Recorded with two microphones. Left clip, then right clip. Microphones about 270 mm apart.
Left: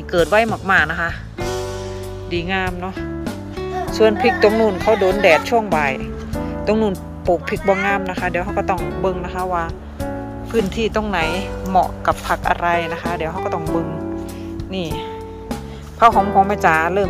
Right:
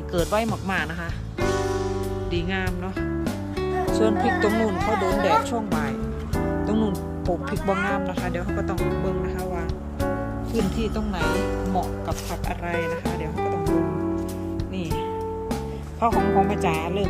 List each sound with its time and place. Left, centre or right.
0.1 s speech: centre
12.1 s speech: left
12.6 s speech: centre
14.8 s speech: centre
16.1 s speech: centre